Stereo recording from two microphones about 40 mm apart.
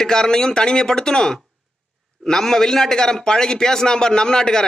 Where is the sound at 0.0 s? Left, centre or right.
Centre.